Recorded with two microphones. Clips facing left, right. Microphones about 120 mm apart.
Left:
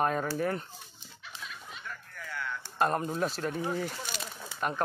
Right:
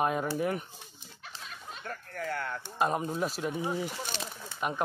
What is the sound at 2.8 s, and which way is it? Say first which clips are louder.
Speech: left 1 dB; 5° right (ahead or behind).